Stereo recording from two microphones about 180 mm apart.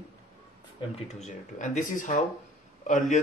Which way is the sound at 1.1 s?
40° left (ahead or behind).